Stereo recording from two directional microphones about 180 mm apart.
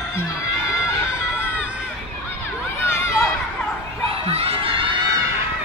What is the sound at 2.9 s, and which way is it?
Chatter, 15° left (ahead or behind).